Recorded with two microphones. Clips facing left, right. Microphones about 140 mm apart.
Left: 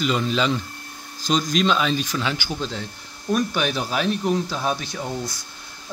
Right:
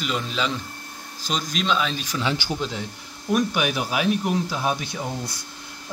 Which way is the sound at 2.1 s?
20° right (ahead or behind).